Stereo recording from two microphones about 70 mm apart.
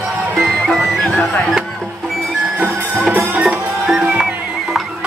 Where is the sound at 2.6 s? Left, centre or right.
Centre.